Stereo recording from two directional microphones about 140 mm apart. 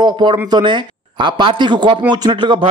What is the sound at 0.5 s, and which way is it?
Speech, 35° right (ahead or behind).